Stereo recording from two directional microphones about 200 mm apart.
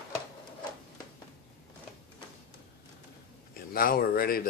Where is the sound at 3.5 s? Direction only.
45° left (ahead or behind).